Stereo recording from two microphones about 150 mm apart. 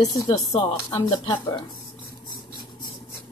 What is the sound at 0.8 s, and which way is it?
Speech, 20° left (ahead or behind).